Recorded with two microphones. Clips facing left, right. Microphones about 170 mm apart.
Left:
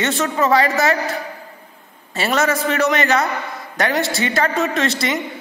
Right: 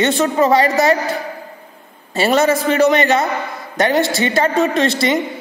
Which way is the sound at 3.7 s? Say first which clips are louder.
Right 4 dB; 25° right (ahead or behind).